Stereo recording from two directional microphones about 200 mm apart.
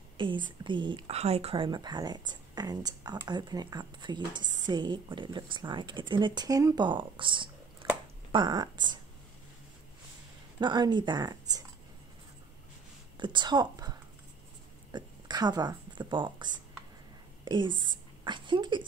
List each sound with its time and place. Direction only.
0.2 s speech: 25° right (ahead or behind)
7.8 s a sound: 20° right (ahead or behind)
8.3 s speech: 20° right (ahead or behind)
10.6 s speech: 20° right (ahead or behind)
13.2 s a woman's voice: 20° right (ahead or behind)
17.5 s speech: 20° right (ahead or behind)